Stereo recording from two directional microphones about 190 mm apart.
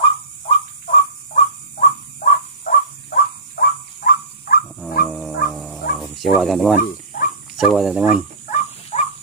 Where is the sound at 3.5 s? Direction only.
50° left (ahead or behind).